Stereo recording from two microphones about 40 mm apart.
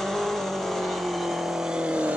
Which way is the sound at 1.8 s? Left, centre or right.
Right.